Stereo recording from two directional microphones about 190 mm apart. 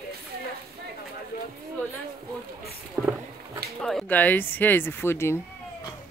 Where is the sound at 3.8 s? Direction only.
5° left (ahead or behind).